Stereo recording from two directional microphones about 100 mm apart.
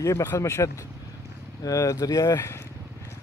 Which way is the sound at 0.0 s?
30° left (ahead or behind).